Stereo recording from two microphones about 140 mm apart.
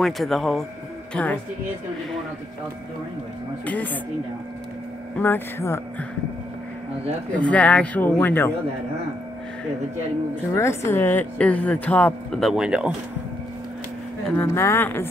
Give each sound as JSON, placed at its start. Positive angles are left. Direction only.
{"t": 0.0, "sound": "a woman's voice", "side_deg": 0}
{"t": 3.6, "sound": "a woman's voice", "side_deg": 10}
{"t": 5.1, "sound": "a woman's voice", "side_deg": 15}
{"t": 7.3, "sound": "a woman's voice", "side_deg": 10}
{"t": 10.5, "sound": "a woman's voice", "side_deg": 20}
{"t": 14.2, "sound": "a woman's voice", "side_deg": 10}